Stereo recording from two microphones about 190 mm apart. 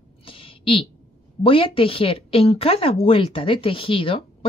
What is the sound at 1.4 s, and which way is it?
Speech, 30° left (ahead or behind).